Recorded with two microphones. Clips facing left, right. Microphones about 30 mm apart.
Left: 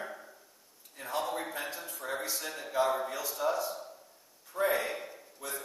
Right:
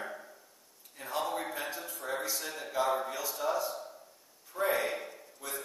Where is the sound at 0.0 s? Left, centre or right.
Centre.